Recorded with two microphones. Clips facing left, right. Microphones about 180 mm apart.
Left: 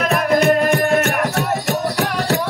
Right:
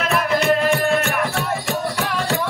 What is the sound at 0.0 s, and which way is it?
Music, 40° left (ahead or behind).